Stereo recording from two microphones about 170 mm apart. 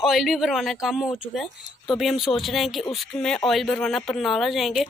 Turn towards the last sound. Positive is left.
turn(degrees=0)  # may be behind; listen again after turning